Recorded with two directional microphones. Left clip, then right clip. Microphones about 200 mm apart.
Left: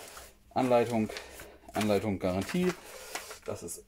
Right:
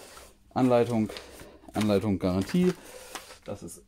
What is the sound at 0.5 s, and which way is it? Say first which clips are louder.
Speech: right 2 dB; 40° right (ahead or behind).